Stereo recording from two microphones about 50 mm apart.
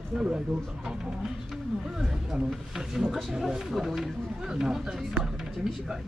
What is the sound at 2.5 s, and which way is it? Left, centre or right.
Speech, centre.